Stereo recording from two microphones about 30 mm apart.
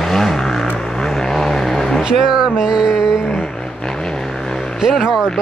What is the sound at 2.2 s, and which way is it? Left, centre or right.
Music, right.